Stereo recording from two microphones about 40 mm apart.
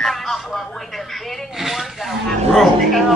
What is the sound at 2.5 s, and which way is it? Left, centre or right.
Speech, centre.